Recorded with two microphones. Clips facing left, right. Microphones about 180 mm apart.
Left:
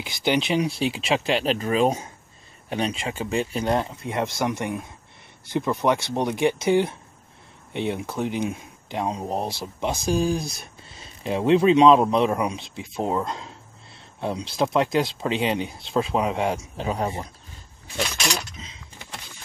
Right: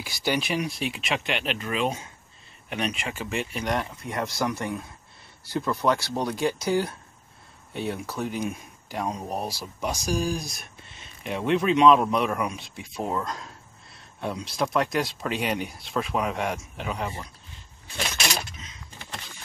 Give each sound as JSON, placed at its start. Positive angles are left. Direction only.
{"t": 0.0, "sound": "speech", "side_deg": 20}